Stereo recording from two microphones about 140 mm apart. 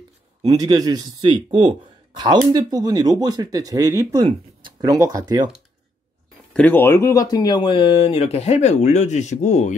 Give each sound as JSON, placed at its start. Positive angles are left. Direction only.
{"t": 0.5, "sound": "speech", "side_deg": -25}
{"t": 6.5, "sound": "speech", "side_deg": 10}